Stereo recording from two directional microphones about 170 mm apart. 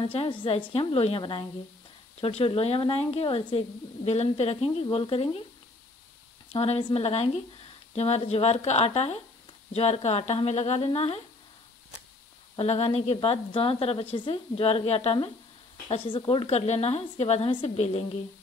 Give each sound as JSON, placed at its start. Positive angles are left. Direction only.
{"t": 0.0, "sound": "speech", "side_deg": 30}
{"t": 6.5, "sound": "speech", "side_deg": 35}
{"t": 12.5, "sound": "speech", "side_deg": 35}